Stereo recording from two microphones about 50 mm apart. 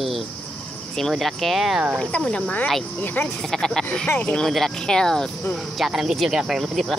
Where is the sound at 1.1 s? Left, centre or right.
Centre.